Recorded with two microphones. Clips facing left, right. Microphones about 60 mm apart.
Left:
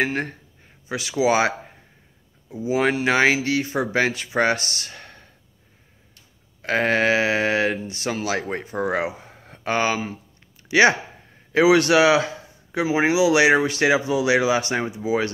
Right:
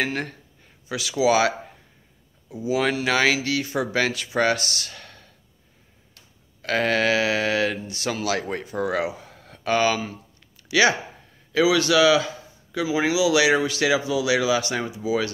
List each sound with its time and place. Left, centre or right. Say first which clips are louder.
0.0 s a man's voice: left 3 dB; centre
0.8 s speech: even; left
2.8 s speech: left 3 dB; left
6.6 s speech: left 2 dB; centre
10.7 s speech: left 3 dB; left
11.5 s a man's voice: left 3 dB; left